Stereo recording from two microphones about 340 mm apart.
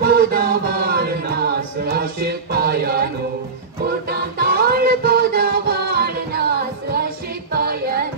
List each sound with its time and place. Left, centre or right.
0.0 s music: right
4.1 s music: right